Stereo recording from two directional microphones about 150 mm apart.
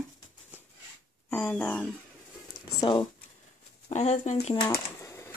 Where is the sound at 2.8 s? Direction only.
35° left (ahead or behind).